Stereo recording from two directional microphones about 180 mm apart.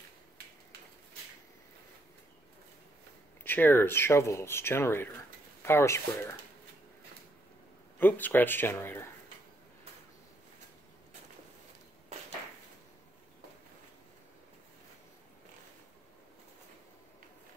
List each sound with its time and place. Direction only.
3.4 s speech: 10° left (ahead or behind)
8.0 s speech: 10° left (ahead or behind)